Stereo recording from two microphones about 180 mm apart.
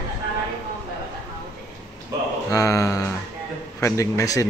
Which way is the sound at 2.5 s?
20° left (ahead or behind).